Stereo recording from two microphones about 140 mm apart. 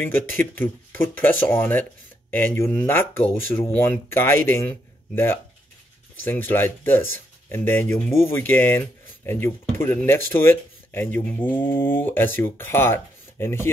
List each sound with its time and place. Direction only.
0.0 s speech: 15° left (ahead or behind)